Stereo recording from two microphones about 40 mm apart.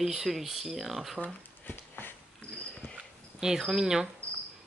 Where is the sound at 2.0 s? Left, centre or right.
Left.